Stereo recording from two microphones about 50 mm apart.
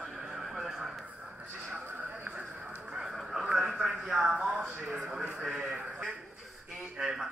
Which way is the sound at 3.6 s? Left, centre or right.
Centre.